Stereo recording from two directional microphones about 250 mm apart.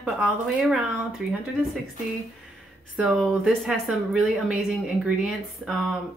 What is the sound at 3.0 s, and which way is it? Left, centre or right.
Speech, centre.